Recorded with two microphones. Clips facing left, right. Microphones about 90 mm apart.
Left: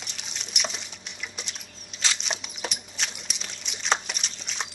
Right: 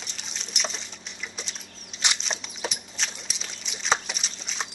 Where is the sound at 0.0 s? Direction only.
Centre (ahead or behind).